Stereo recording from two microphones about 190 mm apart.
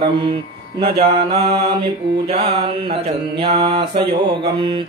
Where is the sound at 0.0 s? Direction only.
20° right (ahead or behind).